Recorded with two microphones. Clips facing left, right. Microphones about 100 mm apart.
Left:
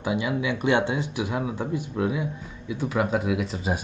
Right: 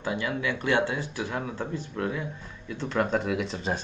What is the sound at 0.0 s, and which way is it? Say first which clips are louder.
Speech: left 3 dB; 15° left (ahead or behind).